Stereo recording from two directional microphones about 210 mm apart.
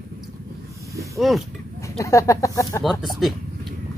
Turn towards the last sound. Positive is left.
turn(degrees=0)  # may be behind; listen again after turning